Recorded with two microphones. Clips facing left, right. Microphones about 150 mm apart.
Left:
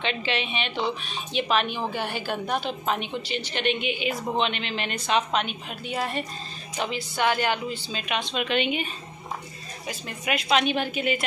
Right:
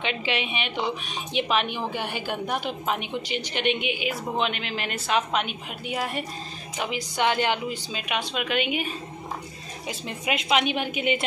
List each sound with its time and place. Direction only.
0.0 s a woman's voice: 10° right (ahead or behind)
9.8 s a woman's voice: 20° right (ahead or behind)